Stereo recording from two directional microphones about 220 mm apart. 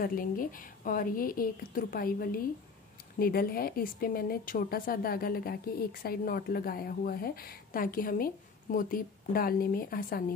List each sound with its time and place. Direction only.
0.0 s a woman's voice: 40° left (ahead or behind)